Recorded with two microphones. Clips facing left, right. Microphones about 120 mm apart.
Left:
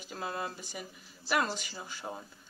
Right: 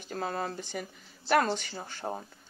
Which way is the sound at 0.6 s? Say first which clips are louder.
Right 6 dB; 60° right (ahead or behind).